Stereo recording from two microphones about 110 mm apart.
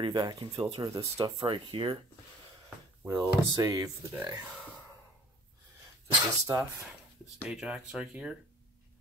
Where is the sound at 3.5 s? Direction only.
35° right (ahead or behind).